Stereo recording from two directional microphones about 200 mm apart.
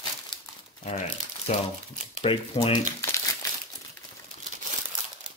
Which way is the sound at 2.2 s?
25° left (ahead or behind).